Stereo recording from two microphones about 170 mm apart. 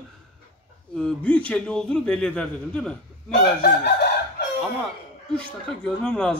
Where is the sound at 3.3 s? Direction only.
65° left (ahead or behind).